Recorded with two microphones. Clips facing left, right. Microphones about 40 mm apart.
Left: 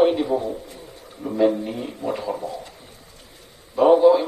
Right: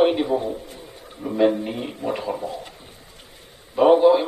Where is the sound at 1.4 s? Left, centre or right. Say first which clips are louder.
Even; right.